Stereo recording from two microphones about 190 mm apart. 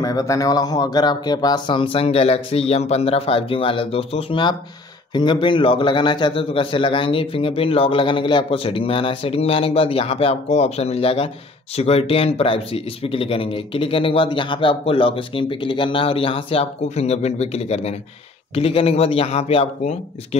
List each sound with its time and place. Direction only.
0.0 s speech: 15° left (ahead or behind)